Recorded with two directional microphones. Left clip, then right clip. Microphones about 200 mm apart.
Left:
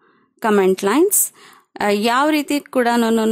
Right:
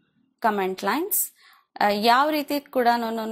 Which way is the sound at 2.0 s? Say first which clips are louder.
Left 2 dB; 30° left (ahead or behind).